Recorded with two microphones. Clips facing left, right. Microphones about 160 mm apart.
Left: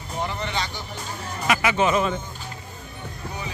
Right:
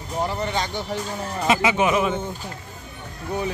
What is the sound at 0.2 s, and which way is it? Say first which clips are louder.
Speech: right 3 dB; 40° right (ahead or behind).